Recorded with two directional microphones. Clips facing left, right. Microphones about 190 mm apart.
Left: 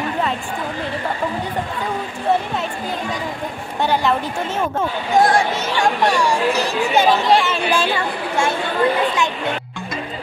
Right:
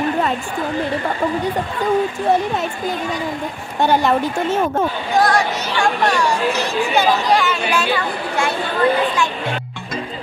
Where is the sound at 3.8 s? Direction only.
45° right (ahead or behind).